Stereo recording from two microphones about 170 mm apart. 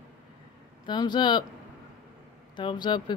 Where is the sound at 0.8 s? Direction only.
25° left (ahead or behind).